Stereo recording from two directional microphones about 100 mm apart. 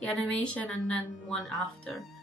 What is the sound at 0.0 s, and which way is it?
Speech, 10° left (ahead or behind).